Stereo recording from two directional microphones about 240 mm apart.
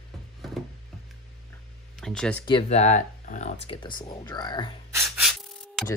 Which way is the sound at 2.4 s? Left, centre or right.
Left.